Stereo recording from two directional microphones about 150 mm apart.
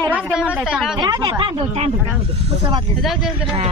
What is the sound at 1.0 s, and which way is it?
Speech, 25° right (ahead or behind).